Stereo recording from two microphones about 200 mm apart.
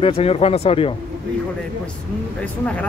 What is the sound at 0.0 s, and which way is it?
Speech, 30° left (ahead or behind).